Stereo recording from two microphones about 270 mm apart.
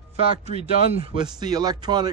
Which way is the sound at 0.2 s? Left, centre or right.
Right.